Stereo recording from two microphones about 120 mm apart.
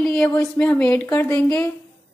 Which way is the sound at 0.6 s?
10° left (ahead or behind).